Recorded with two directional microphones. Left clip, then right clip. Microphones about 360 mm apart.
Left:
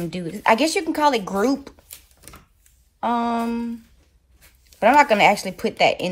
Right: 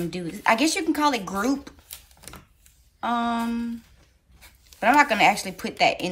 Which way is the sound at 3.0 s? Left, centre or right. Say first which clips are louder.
Left 3 dB; centre.